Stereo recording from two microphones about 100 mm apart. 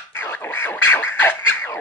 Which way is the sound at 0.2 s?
25° left (ahead or behind).